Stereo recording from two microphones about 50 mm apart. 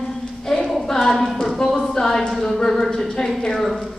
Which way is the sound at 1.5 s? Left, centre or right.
Centre.